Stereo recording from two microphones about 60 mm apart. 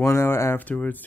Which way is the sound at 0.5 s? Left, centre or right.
Left.